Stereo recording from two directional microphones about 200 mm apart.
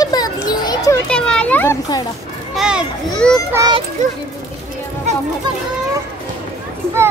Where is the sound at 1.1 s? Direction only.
5° left (ahead or behind).